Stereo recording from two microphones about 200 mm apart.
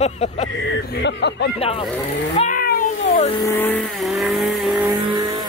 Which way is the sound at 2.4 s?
45° left (ahead or behind).